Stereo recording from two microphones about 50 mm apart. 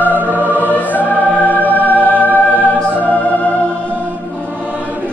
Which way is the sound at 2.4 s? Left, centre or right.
Left.